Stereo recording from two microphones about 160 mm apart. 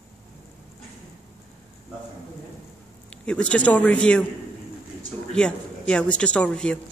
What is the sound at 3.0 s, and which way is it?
A man's voice, 5° left (ahead or behind).